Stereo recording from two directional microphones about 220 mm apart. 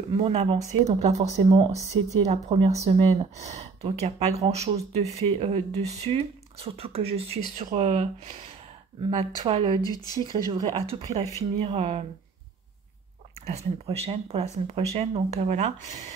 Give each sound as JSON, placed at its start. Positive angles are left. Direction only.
{"t": 0.1, "sound": "speech", "side_deg": -25}
{"t": 9.8, "sound": "speech", "side_deg": 15}
{"t": 10.3, "sound": "speech", "side_deg": -15}
{"t": 13.5, "sound": "speech", "side_deg": -30}